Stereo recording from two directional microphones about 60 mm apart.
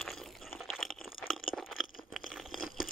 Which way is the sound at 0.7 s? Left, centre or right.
Centre.